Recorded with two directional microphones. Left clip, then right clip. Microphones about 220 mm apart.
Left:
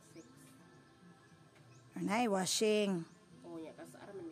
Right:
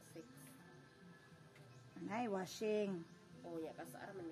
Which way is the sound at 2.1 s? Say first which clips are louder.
Left 9 dB; 45° left (ahead or behind).